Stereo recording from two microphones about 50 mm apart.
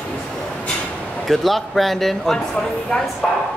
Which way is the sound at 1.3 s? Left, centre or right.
Centre.